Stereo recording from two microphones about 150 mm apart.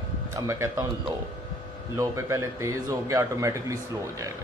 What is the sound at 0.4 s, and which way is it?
Speech, 20° right (ahead or behind).